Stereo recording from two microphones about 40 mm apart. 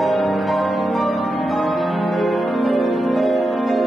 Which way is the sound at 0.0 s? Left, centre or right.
Centre.